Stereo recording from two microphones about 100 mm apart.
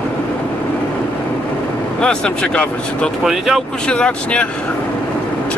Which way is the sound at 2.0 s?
10° left (ahead or behind).